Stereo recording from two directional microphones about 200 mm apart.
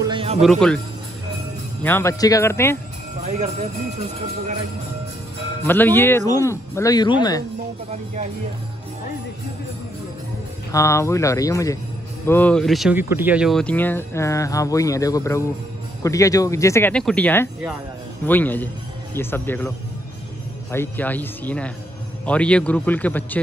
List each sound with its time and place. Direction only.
0.0 s music: 25° right (ahead or behind)
0.4 s speech: centre (ahead or behind)
1.8 s speech: 10° left (ahead or behind)
3.2 s speech: 35° right (ahead or behind)
5.6 s speech: 10° left (ahead or behind)
10.7 s speech: 15° left (ahead or behind)
20.7 s speech: 10° left (ahead or behind)